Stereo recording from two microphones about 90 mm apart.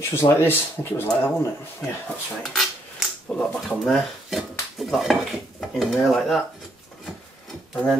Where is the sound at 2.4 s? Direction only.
Centre (ahead or behind).